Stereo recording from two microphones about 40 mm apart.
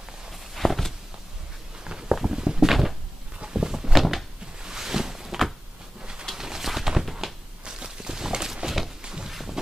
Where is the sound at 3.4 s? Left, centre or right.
Centre.